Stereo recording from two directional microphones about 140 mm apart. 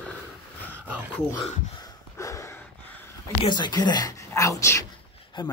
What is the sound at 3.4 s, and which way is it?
Speech, 30° left (ahead or behind).